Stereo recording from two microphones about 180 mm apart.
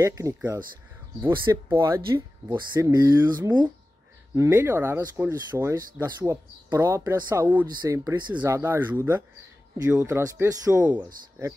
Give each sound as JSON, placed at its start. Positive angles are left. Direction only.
{"t": 0.0, "sound": "speech", "side_deg": -15}
{"t": 1.7, "sound": "speech", "side_deg": -15}